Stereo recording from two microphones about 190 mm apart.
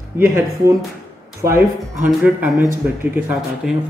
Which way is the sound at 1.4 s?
10° right (ahead or behind).